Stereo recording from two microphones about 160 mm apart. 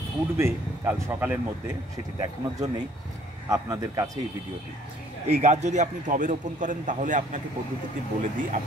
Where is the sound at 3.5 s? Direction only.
20° right (ahead or behind).